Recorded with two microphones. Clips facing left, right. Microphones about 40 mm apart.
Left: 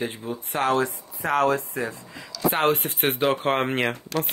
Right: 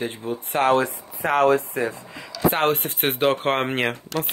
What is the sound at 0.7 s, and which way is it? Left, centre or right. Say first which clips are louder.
Speech: right 3 dB; right.